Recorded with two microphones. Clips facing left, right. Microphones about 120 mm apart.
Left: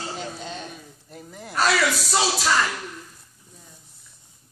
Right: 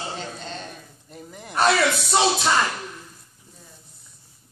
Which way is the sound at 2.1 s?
20° right (ahead or behind).